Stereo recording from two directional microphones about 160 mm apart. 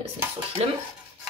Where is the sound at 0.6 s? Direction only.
40° right (ahead or behind).